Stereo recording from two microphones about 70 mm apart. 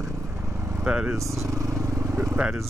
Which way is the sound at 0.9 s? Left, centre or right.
Centre.